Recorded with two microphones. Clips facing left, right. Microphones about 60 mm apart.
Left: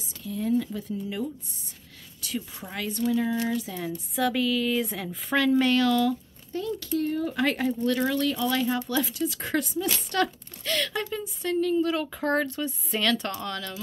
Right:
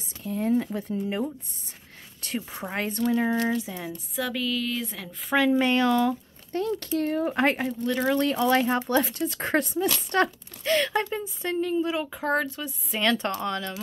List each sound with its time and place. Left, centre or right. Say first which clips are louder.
0.2 s speech: right 1 dB; right
0.7 s speech: right 3 dB; right
3.9 s speech: left 5 dB; centre
5.3 s speech: even; centre
6.5 s speech: right 2 dB; right
7.2 s speech: right 3 dB; right
7.5 s speech: left 2 dB; centre
8.1 s speech: right 4 dB; right
10.1 s speech: right 2 dB; right; by 13.0 s centre
13.0 s speech: right 3 dB; right